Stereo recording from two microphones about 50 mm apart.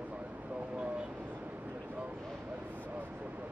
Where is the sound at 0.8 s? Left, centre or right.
Right.